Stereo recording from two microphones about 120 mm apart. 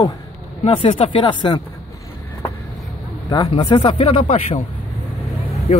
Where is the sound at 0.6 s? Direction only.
50° left (ahead or behind).